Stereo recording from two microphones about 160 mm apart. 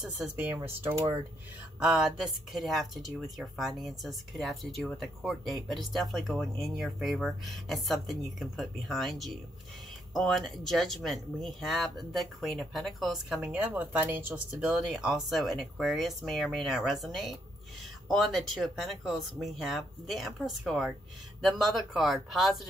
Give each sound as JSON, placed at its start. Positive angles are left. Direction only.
{"t": 0.0, "sound": "speech", "side_deg": -5}